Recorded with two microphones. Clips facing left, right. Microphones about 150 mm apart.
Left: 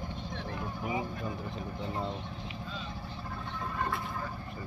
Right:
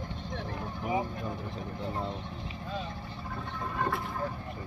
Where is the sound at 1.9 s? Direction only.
Centre (ahead or behind).